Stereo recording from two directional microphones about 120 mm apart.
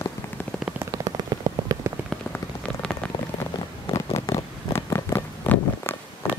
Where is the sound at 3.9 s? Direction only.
25° left (ahead or behind).